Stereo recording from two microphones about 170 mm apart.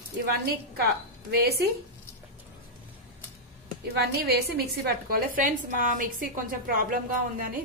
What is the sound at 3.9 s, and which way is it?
Speech, 70° right (ahead or behind).